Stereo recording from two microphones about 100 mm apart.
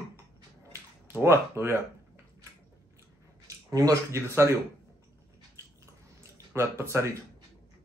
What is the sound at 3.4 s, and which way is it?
Speech, 35° right (ahead or behind).